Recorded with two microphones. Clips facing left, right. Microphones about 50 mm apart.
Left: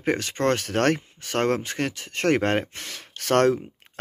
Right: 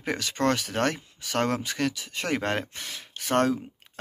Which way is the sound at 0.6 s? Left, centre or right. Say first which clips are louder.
Left 5 dB; left.